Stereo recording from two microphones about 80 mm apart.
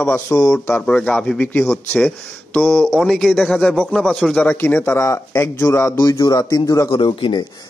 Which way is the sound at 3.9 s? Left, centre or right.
Centre.